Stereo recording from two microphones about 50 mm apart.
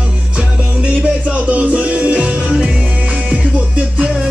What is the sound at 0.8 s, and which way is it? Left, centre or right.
Music, right.